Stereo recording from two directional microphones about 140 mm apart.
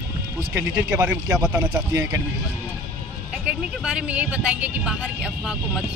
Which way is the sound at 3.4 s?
5° right (ahead or behind).